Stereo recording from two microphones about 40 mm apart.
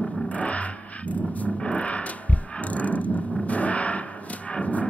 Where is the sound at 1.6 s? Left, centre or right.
Left.